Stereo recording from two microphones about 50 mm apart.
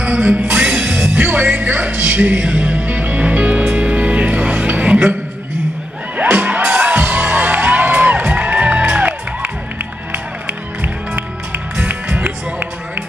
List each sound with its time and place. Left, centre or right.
0.0 s music: right
6.1 s music: right